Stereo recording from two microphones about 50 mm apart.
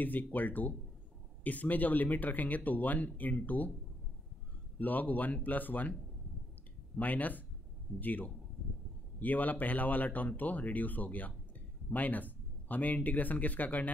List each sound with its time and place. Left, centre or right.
0.0 s speech: left
4.7 s speech: left
7.0 s speech: left